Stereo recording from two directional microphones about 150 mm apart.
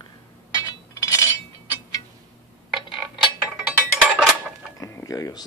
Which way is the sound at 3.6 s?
5° right (ahead or behind).